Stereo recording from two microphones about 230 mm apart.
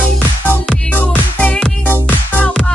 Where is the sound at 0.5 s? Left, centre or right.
Centre.